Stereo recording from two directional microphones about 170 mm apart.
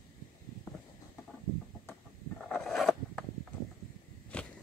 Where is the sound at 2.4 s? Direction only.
5° left (ahead or behind).